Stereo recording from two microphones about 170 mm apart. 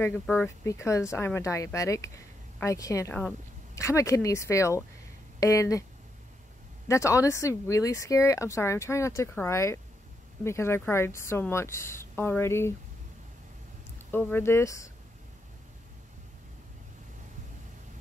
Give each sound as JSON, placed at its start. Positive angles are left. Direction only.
{"t": 0.0, "sound": "speech", "side_deg": 10}
{"t": 6.9, "sound": "speech", "side_deg": 20}
{"t": 14.1, "sound": "speech", "side_deg": 15}